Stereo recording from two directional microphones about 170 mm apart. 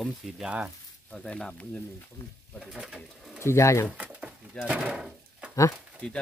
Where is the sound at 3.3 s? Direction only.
15° left (ahead or behind).